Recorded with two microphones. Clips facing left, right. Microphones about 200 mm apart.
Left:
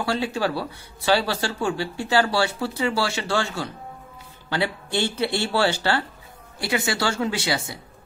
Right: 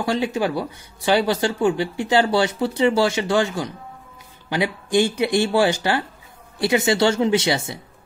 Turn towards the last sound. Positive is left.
turn(degrees=-25)  # may be behind; listen again after turning